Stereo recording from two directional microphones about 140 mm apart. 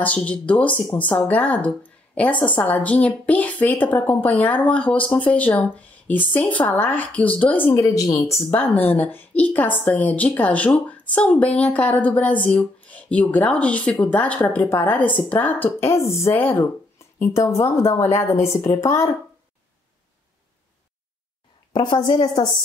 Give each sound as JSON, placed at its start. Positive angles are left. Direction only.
{"t": 0.0, "sound": "a woman's voice", "side_deg": 10}
{"t": 7.6, "sound": "a woman's voice", "side_deg": 20}
{"t": 8.5, "sound": "a woman's voice", "side_deg": 15}
{"t": 21.7, "sound": "a woman's voice", "side_deg": 35}